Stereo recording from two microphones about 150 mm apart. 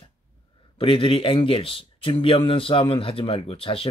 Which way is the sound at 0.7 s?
35° left (ahead or behind).